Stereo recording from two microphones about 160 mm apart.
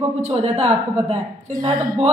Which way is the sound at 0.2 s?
40° right (ahead or behind).